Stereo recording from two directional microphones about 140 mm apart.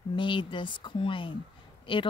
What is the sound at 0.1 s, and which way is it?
Speech, 35° left (ahead or behind).